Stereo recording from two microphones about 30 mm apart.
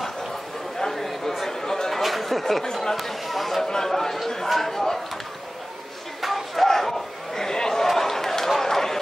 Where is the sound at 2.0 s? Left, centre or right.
Centre.